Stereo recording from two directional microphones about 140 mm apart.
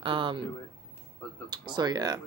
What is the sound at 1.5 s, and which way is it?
Speech, 30° right (ahead or behind).